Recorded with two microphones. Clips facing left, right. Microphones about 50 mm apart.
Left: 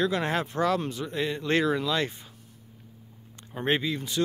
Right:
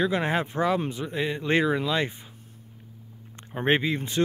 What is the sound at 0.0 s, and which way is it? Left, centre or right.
Speech, centre.